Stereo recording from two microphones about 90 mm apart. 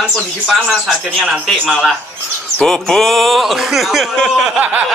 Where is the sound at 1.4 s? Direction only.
5° left (ahead or behind).